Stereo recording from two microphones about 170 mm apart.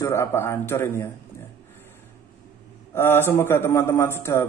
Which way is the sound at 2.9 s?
15° left (ahead or behind).